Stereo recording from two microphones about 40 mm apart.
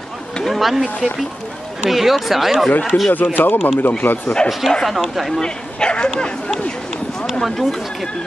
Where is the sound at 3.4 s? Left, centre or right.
Left.